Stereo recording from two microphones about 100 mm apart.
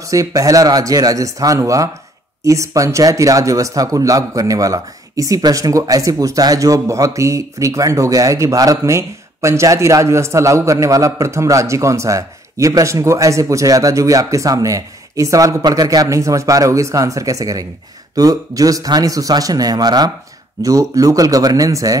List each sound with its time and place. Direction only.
0.0 s speech: 35° right (ahead or behind)